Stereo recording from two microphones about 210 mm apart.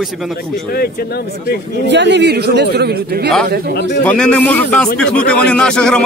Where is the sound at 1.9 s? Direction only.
55° right (ahead or behind).